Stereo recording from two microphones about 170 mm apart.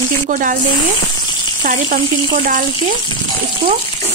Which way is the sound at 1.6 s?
50° right (ahead or behind).